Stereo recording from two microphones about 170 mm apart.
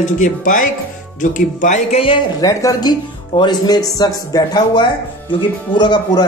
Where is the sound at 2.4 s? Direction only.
20° left (ahead or behind).